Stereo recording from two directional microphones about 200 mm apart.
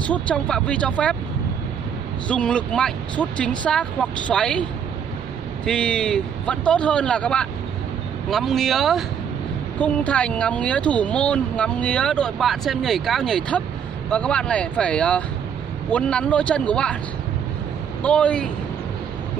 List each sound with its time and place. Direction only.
0.1 s speech: 5° left (ahead or behind)
2.2 s speech: 5° left (ahead or behind)
5.7 s speech: 5° left (ahead or behind)
18.0 s speech: 5° left (ahead or behind)